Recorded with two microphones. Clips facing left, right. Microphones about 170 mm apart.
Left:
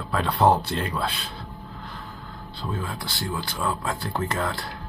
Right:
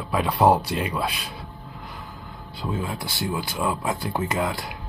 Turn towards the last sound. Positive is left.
turn(degrees=-15)  # may be behind; listen again after turning